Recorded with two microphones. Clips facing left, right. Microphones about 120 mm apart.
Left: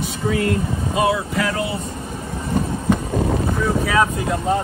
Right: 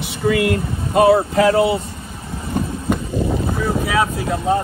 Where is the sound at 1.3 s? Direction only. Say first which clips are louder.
Right 8 dB; 30° right (ahead or behind).